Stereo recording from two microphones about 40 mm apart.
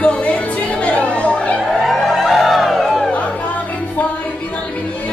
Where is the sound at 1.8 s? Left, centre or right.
Centre.